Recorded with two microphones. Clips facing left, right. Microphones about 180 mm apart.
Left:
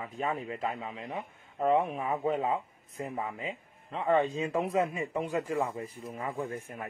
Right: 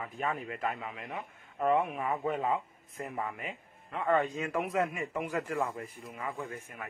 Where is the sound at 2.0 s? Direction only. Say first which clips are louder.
Left 2 dB; 20° left (ahead or behind).